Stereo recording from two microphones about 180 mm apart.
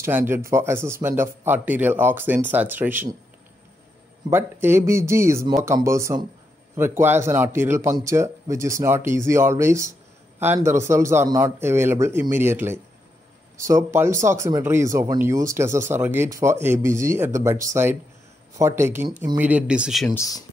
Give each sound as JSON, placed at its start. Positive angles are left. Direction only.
{"t": 0.0, "sound": "speech", "side_deg": -10}
{"t": 4.3, "sound": "speech", "side_deg": -15}
{"t": 20.2, "sound": "speech", "side_deg": 20}